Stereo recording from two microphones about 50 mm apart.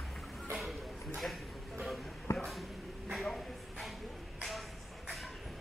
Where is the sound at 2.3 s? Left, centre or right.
Left.